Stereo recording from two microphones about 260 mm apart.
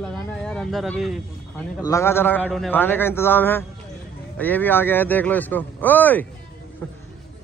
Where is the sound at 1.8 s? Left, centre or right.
Centre.